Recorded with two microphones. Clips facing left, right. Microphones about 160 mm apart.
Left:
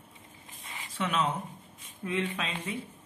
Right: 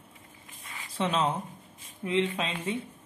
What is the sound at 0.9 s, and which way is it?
Speech, 30° right (ahead or behind).